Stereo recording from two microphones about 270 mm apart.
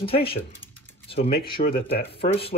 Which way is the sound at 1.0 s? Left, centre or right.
Left.